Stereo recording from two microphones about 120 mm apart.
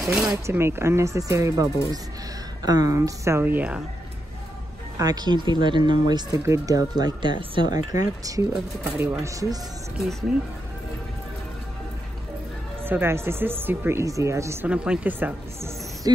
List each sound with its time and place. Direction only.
0.0 s speech: 5° right (ahead or behind)
0.3 s speech: 20° right (ahead or behind)
4.9 s speech: 35° right (ahead or behind)
7.9 s speech: 30° right (ahead or behind)
10.3 s speech: 5° right (ahead or behind)
12.8 s speech: 20° right (ahead or behind)
14.7 s speech: 10° right (ahead or behind)